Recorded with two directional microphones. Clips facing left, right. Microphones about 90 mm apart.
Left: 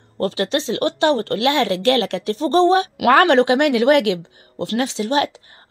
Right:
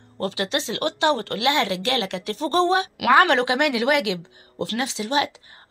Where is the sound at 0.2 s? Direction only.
40° left (ahead or behind).